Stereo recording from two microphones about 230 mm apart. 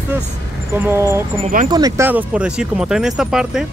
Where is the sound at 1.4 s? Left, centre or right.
Right.